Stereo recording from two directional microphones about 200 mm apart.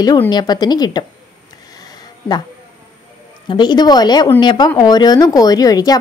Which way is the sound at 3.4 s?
20° left (ahead or behind).